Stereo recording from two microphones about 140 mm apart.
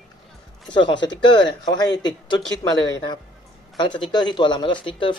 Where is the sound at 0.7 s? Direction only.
35° left (ahead or behind).